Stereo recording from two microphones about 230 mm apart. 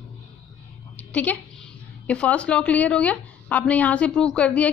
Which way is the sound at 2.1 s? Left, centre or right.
Centre.